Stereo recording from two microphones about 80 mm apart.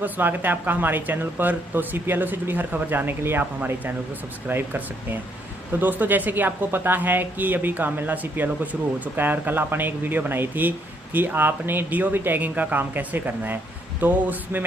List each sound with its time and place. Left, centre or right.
0.0 s speech: right